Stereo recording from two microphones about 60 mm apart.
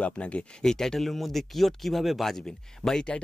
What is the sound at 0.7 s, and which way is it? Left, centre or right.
Speech, centre.